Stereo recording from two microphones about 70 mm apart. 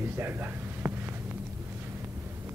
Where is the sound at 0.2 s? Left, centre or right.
Right.